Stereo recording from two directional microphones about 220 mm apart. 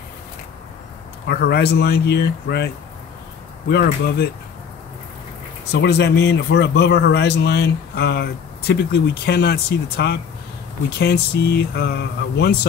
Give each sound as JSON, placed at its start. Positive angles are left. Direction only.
{"t": 1.2, "sound": "speech", "side_deg": 45}
{"t": 5.7, "sound": "speech", "side_deg": 50}